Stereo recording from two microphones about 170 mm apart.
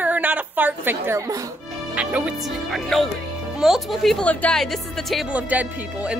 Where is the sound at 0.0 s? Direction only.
10° right (ahead or behind).